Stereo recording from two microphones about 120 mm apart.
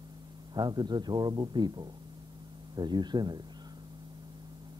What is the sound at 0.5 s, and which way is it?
Speech, 35° right (ahead or behind).